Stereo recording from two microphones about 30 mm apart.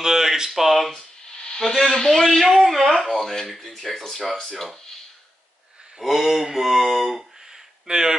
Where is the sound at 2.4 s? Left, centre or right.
Centre.